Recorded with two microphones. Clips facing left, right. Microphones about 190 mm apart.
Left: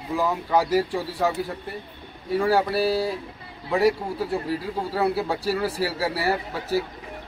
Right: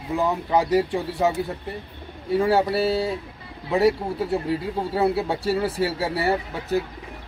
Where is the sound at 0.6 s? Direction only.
Centre (ahead or behind).